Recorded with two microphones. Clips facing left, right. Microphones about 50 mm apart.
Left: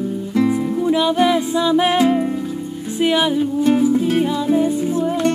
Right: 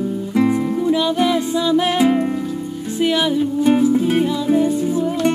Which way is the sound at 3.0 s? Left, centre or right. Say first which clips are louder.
Left 1 dB; centre.